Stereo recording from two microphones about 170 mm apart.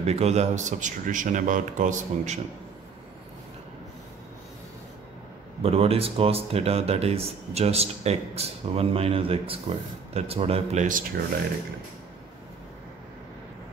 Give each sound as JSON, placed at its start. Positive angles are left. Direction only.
{"t": 0.0, "sound": "a man's voice", "side_deg": -40}
{"t": 5.6, "sound": "speech", "side_deg": -35}